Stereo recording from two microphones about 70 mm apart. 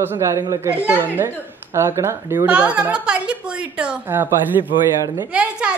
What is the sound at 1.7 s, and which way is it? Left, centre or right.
Speech, right.